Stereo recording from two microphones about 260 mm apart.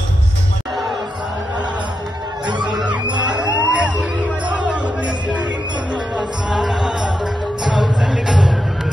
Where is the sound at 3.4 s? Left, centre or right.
Centre.